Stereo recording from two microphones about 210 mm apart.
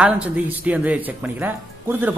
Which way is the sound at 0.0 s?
5° right (ahead or behind).